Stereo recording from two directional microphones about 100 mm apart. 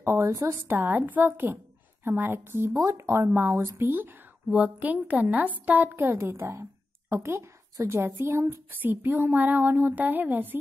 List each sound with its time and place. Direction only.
0.0 s a woman's voice: 25° right (ahead or behind)